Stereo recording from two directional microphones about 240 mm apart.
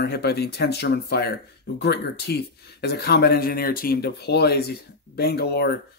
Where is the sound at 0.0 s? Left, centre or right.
Left.